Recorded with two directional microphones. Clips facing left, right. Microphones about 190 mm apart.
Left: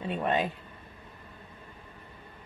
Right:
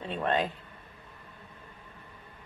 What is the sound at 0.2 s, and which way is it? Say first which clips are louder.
Speech: even; 10° left (ahead or behind).